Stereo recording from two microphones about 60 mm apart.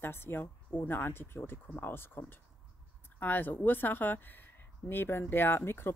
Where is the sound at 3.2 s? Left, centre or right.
Left.